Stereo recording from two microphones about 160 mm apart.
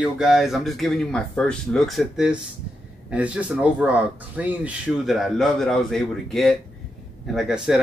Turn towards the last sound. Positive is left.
turn(degrees=-5)  # may be behind; listen again after turning